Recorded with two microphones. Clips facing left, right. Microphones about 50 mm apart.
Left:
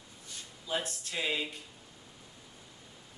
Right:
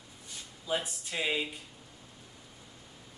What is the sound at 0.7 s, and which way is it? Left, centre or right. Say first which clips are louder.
Speech: right 2 dB; centre.